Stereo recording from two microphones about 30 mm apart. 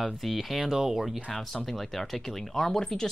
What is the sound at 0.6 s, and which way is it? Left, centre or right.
Speech, centre.